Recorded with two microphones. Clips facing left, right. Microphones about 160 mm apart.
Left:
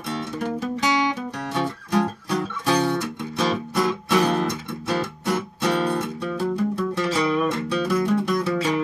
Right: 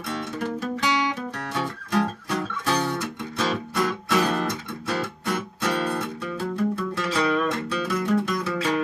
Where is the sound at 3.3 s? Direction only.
15° left (ahead or behind).